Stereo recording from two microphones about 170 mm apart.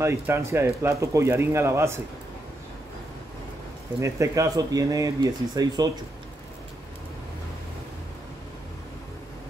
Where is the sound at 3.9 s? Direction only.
15° right (ahead or behind).